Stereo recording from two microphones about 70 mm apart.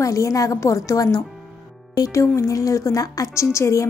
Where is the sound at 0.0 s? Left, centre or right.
Left.